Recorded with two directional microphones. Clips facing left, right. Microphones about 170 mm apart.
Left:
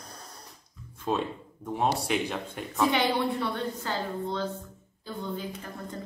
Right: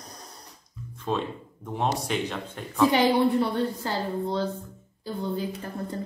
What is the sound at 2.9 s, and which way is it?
A woman's voice, 40° right (ahead or behind).